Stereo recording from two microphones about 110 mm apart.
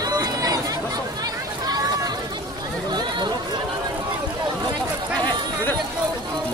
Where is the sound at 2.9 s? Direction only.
40° right (ahead or behind).